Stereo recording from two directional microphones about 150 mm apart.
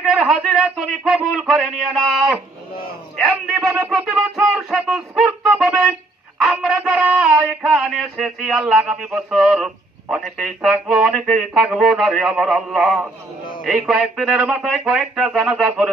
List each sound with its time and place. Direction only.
0.0 s speech: 5° right (ahead or behind)